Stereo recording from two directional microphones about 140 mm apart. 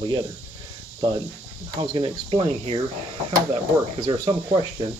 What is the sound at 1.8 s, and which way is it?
Speech, 35° right (ahead or behind).